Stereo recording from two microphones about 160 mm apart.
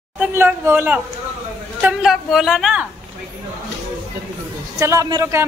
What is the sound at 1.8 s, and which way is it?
A woman's voice, 5° right (ahead or behind).